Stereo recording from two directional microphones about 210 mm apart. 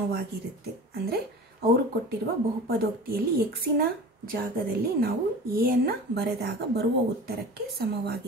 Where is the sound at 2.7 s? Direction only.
45° right (ahead or behind).